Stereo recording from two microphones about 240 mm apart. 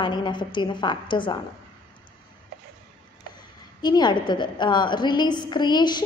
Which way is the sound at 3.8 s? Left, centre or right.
Centre.